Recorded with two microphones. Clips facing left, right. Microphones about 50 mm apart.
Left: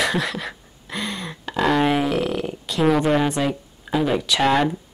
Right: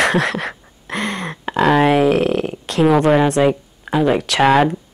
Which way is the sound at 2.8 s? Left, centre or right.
Centre.